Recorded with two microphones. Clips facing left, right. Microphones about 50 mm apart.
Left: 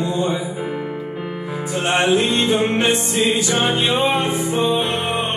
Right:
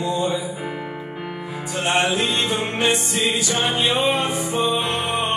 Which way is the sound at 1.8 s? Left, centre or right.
Centre.